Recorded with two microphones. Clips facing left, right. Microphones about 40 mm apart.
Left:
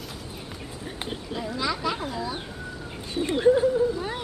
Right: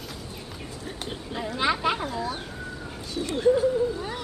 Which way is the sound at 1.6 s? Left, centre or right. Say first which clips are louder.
Right 4 dB; right.